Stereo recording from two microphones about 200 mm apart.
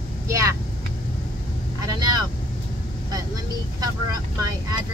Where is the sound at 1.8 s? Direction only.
20° right (ahead or behind).